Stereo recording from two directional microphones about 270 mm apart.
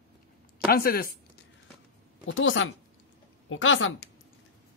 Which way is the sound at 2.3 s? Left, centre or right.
Left.